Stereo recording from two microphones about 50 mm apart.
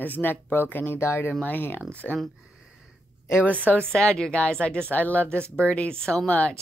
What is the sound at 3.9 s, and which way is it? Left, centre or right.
Speech, centre.